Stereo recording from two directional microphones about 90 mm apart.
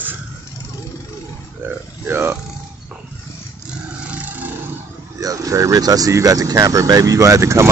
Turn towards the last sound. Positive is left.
turn(degrees=-35)  # may be behind; listen again after turning